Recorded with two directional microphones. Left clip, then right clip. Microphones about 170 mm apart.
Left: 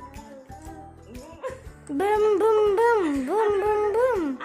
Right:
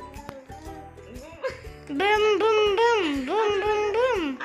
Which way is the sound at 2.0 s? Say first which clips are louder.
Even; 30° left (ahead or behind).